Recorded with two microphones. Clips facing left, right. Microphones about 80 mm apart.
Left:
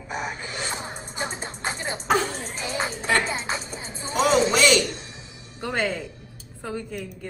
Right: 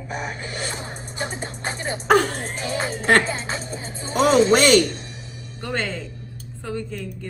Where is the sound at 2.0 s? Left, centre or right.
Right.